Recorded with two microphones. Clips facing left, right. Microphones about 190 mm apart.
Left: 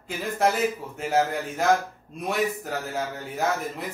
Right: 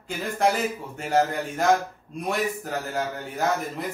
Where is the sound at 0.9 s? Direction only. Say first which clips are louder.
Right 4 dB; centre (ahead or behind).